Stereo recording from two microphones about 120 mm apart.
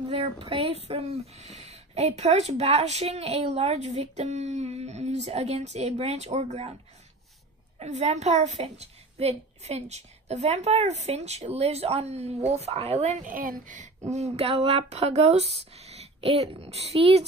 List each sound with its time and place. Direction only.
0.1 s speech: 55° right (ahead or behind)
7.8 s speech: 65° right (ahead or behind)
14.4 s speech: 55° right (ahead or behind)